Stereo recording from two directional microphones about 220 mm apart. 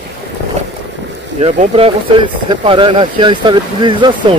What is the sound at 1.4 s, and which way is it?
Speech, 25° right (ahead or behind).